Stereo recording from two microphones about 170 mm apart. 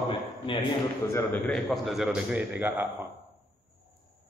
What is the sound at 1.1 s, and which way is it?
Speech, 10° left (ahead or behind).